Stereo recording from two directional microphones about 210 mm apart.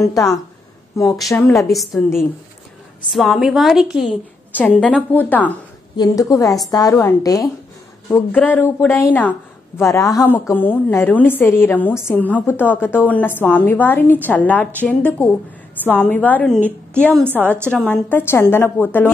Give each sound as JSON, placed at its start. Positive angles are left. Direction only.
{"t": 0.0, "sound": "a woman's voice", "side_deg": 15}
{"t": 1.3, "sound": "a woman's voice", "side_deg": 15}
{"t": 1.7, "sound": "a woman's voice", "side_deg": 0}
{"t": 3.1, "sound": "a woman's voice", "side_deg": 0}